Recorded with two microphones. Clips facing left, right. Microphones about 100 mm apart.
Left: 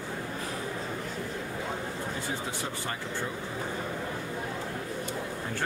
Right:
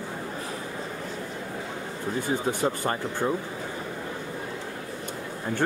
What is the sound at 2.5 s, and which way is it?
Speech, 50° right (ahead or behind).